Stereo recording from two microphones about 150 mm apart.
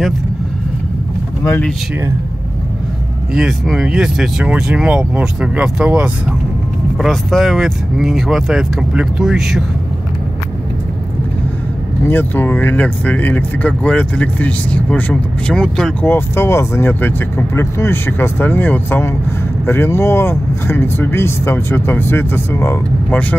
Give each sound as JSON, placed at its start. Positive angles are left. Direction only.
{"t": 3.3, "sound": "speech", "side_deg": 0}
{"t": 7.0, "sound": "speech", "side_deg": 0}
{"t": 12.0, "sound": "speech", "side_deg": 15}
{"t": 16.1, "sound": "speech", "side_deg": 15}